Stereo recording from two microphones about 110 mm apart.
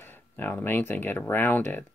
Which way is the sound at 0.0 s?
20° left (ahead or behind).